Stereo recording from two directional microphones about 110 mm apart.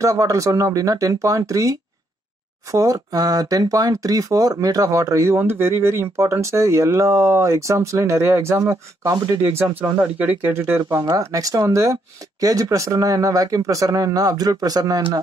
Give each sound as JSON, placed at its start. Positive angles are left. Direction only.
{"t": 0.0, "sound": "speech", "side_deg": -30}